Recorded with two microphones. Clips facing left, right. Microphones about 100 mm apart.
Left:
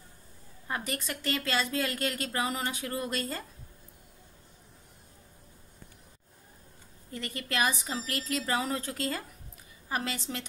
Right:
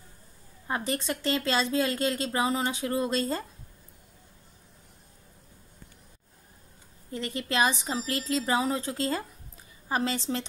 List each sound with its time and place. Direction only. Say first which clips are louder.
0.7 s a woman's voice: right 5 dB; 25° right (ahead or behind)
7.1 s a woman's voice: right 5 dB; 25° right (ahead or behind)